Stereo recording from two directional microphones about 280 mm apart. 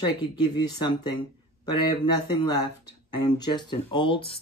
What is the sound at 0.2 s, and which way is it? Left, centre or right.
Speech, centre.